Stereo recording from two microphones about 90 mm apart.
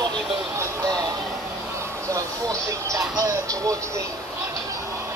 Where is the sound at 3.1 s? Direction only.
40° right (ahead or behind).